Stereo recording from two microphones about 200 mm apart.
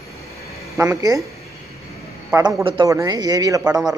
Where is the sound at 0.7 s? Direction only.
15° right (ahead or behind).